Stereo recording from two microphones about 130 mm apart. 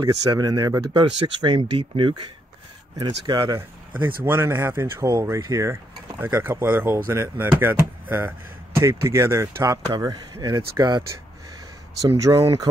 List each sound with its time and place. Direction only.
0.0 s speech: 30° right (ahead or behind)
3.3 s speech: 30° right (ahead or behind)
4.2 s speech: 15° right (ahead or behind); by 11.1 s 35° right (ahead or behind)
12.2 s speech: 30° right (ahead or behind)